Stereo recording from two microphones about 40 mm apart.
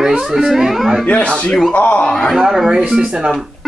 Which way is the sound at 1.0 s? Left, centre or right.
Left.